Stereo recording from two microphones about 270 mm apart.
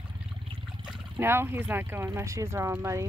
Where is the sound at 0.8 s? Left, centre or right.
Centre.